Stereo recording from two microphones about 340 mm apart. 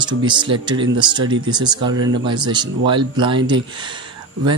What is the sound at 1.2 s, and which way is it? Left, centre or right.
Speech, right.